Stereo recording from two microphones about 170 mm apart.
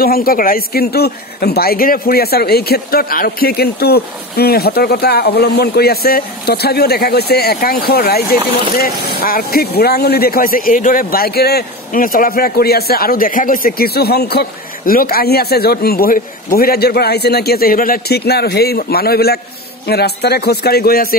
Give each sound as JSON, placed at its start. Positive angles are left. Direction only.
{"t": 0.0, "sound": "a man's voice", "side_deg": 60}